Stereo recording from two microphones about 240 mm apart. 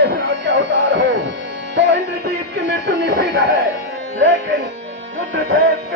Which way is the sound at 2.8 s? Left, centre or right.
Right.